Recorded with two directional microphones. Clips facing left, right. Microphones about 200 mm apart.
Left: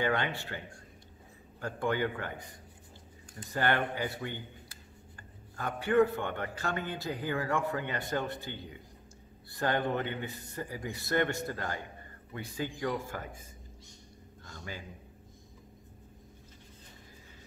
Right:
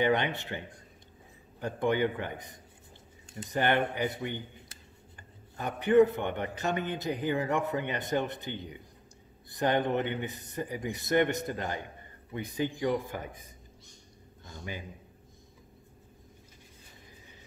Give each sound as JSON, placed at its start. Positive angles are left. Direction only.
{"t": 0.0, "sound": "a man's voice", "side_deg": -20}